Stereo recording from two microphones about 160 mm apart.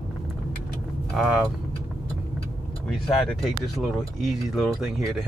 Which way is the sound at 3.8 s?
Centre (ahead or behind).